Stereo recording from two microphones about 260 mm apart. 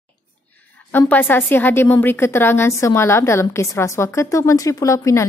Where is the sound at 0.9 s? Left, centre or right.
Centre.